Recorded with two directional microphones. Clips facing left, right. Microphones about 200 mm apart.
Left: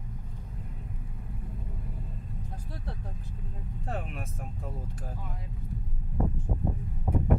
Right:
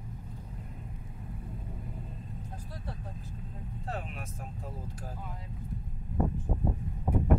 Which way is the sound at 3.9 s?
50° left (ahead or behind).